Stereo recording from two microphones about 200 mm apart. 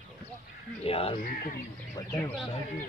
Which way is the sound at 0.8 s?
30° left (ahead or behind).